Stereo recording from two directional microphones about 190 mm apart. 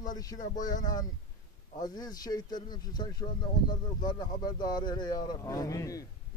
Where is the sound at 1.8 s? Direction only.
20° left (ahead or behind).